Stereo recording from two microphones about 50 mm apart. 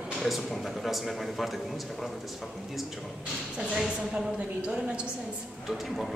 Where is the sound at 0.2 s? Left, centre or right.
Centre.